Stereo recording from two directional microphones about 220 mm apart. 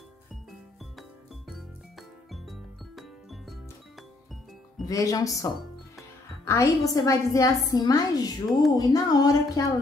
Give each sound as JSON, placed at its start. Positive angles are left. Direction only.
{"t": 1.5, "sound": "music", "side_deg": 0}
{"t": 4.8, "sound": "a woman's voice", "side_deg": 15}